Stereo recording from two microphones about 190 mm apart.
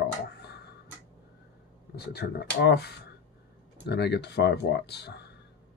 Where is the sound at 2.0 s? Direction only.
60° left (ahead or behind).